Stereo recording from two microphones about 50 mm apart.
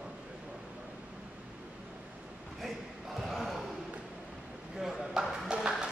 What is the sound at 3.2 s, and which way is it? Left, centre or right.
Basketball bounce, centre.